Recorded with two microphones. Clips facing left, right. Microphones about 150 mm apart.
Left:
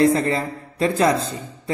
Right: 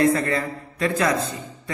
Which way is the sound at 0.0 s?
30° left (ahead or behind).